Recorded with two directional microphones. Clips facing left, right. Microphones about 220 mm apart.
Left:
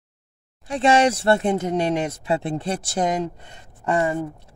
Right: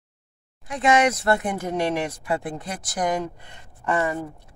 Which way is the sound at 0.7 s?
30° left (ahead or behind).